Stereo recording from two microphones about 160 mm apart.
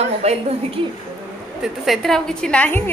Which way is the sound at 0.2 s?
40° right (ahead or behind).